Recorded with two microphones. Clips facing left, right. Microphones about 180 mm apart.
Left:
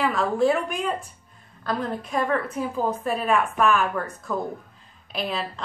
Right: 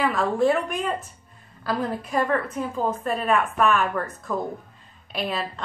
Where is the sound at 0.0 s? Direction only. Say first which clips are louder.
Even; centre (ahead or behind).